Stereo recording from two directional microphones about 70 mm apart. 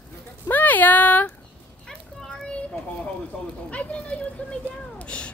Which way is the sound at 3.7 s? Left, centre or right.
Centre.